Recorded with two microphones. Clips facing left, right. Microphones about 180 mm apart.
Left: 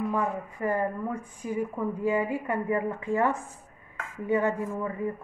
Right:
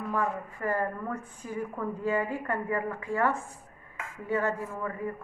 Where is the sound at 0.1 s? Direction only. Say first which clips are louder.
Left 2 dB; 20° left (ahead or behind).